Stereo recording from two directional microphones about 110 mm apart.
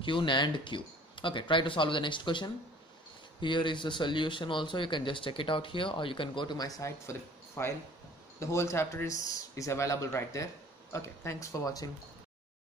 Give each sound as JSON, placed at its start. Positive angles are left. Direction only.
{"t": 0.0, "sound": "speech", "side_deg": 45}
{"t": 6.8, "sound": "speech", "side_deg": 25}